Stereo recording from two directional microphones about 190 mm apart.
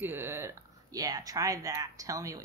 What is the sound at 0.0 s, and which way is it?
Speech, 15° right (ahead or behind).